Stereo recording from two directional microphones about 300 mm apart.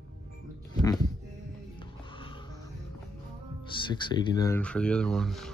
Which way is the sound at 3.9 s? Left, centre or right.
Centre.